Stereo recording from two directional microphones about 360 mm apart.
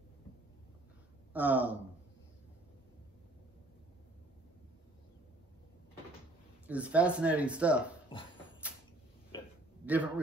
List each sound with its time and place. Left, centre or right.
1.3 s speech: centre
6.7 s speech: centre
8.1 s dog: centre
9.8 s speech: centre